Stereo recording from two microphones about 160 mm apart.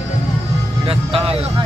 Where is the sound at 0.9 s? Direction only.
35° right (ahead or behind).